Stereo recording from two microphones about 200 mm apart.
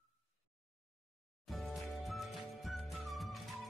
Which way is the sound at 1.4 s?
Centre (ahead or behind).